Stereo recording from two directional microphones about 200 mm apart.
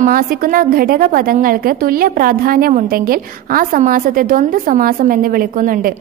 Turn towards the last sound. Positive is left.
turn(degrees=-45)  # may be behind; listen again after turning